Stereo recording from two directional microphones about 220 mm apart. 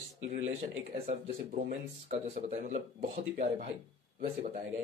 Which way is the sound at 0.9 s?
30° right (ahead or behind).